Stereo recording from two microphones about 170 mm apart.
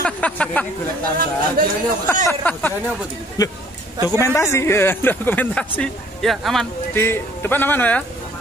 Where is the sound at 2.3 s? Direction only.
10° left (ahead or behind).